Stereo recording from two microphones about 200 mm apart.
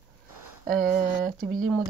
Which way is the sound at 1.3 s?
40° right (ahead or behind).